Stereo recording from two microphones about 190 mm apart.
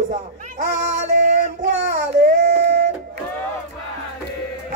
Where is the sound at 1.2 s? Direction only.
35° right (ahead or behind).